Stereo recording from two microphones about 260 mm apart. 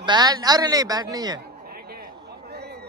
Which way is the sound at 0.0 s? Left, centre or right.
Centre.